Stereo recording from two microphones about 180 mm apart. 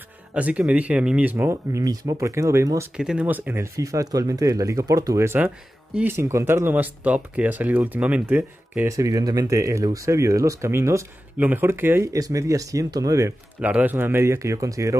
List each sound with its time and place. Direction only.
0.3 s speech: 5° right (ahead or behind)
3.0 s speech: 5° right (ahead or behind)
13.6 s speech: 10° right (ahead or behind)